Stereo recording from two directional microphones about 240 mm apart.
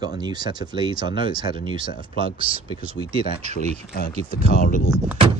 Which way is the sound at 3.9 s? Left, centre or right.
Left.